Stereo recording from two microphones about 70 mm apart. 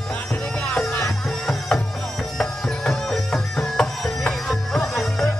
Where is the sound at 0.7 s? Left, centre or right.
Centre.